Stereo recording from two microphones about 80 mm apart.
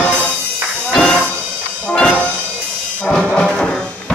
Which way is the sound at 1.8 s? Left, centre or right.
Centre.